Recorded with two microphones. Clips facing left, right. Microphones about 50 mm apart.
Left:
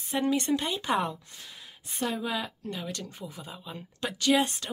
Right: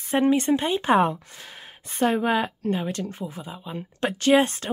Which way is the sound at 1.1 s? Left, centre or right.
Right.